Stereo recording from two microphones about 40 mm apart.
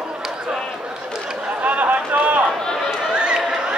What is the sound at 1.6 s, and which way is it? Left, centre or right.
Run, right.